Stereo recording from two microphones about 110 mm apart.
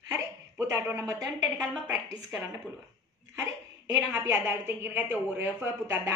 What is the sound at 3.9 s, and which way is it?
A woman's voice, 25° right (ahead or behind).